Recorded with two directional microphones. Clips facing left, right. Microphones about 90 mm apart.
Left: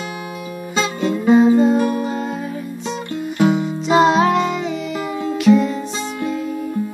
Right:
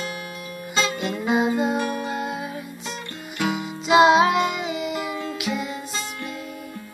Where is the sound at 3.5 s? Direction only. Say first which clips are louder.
Left 4 dB; 5° right (ahead or behind).